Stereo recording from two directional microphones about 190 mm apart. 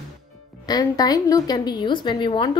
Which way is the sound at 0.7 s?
20° left (ahead or behind).